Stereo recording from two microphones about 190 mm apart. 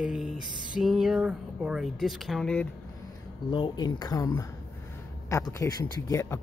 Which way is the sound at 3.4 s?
25° left (ahead or behind).